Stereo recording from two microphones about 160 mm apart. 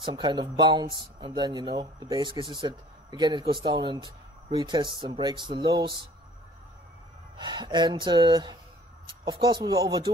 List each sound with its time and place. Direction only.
0.0 s speech: 25° right (ahead or behind)
7.3 s speech: 30° right (ahead or behind)